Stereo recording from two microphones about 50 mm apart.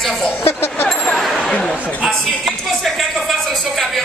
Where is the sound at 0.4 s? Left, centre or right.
Left.